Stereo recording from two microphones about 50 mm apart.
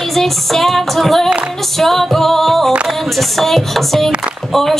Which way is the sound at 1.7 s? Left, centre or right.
Centre.